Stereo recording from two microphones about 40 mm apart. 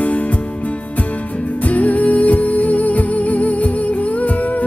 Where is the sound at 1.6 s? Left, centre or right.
Left.